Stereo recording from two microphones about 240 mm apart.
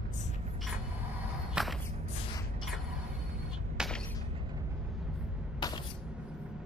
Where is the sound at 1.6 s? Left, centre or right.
Centre.